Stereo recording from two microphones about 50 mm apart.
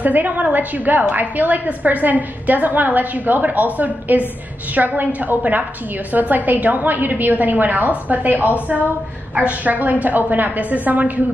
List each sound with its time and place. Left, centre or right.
0.0 s a woman's voice: right